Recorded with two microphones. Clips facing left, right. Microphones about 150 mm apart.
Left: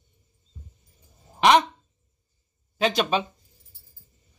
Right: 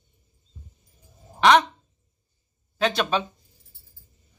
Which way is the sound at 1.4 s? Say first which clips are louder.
Right 1 dB; 20° left (ahead or behind).